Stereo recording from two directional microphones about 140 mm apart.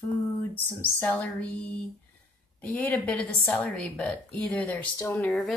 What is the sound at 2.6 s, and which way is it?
A woman's voice, 10° left (ahead or behind).